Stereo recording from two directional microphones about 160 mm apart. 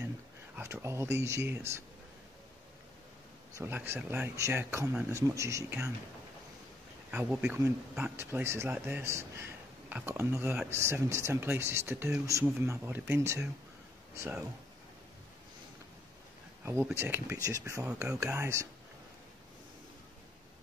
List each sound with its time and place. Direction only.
0.6 s speech: 15° right (ahead or behind)
3.5 s speech: 15° right (ahead or behind)
7.1 s speech: 5° right (ahead or behind)
16.6 s speech: 15° right (ahead or behind)
17.8 s speech: 5° right (ahead or behind)
18.2 s speech: 15° right (ahead or behind)